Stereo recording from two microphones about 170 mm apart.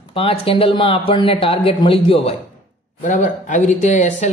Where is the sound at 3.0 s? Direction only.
45° left (ahead or behind).